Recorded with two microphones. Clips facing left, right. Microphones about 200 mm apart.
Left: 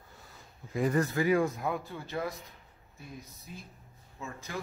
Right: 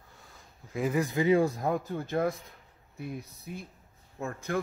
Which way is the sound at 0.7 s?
5° right (ahead or behind).